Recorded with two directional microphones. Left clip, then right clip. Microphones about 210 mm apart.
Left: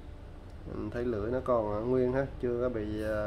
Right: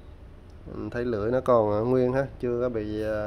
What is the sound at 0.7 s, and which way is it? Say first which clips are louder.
Speech: right 4 dB; 25° right (ahead or behind).